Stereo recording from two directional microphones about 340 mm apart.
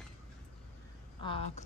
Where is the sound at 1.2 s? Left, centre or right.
Centre.